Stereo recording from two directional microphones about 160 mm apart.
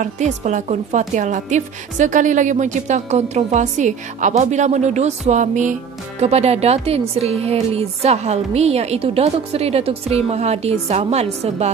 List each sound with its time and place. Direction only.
0.0 s a woman's voice: 50° right (ahead or behind)